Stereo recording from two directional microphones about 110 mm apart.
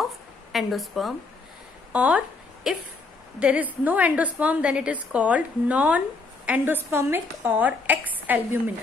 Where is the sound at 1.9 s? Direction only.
10° right (ahead or behind).